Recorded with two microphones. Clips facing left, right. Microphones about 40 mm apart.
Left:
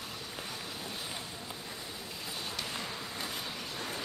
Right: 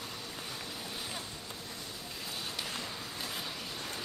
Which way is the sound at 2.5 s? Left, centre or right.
Centre.